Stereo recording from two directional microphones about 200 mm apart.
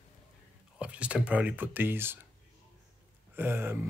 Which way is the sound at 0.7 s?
5° right (ahead or behind).